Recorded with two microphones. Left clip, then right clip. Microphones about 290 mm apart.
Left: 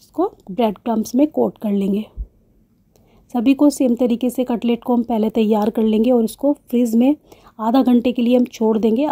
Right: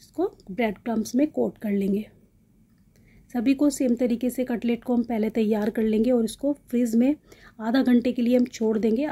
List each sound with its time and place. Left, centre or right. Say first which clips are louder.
0.1 s speech: left 7 dB; centre
3.3 s speech: left 8 dB; centre